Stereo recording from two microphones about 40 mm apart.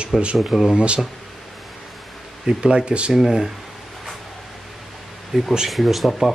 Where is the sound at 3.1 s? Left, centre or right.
Centre.